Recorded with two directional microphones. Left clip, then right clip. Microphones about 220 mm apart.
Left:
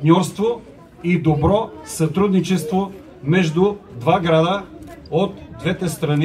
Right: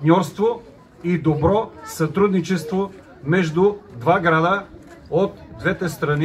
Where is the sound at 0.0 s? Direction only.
30° right (ahead or behind).